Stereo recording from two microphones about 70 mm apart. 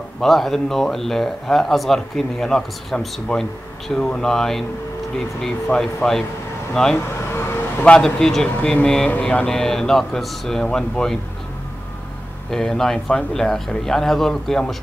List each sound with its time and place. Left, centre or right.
0.2 s a man's voice: centre
7.2 s vehicle: left
7.8 s speech: centre
9.2 s mantra: centre
9.5 s speech: centre
12.4 s speech: centre